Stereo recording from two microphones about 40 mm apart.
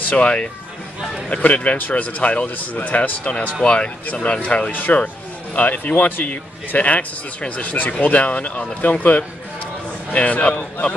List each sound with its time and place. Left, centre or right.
0.1 s speech: left
4.6 s speech: left
5.5 s speech: left
6.2 s speech: left
10.1 s speech: left